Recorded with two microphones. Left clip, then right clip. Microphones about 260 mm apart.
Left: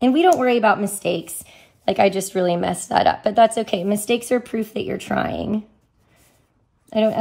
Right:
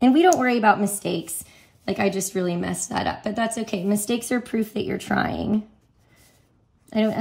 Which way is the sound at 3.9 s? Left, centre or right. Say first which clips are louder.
Left 5 dB; centre.